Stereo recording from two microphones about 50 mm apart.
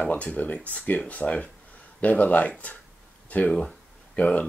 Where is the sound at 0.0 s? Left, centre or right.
Left.